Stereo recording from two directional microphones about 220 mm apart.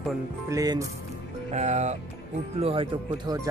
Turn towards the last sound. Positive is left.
turn(degrees=-15)  # may be behind; listen again after turning